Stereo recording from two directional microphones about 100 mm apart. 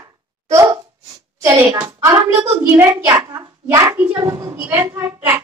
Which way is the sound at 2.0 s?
35° right (ahead or behind).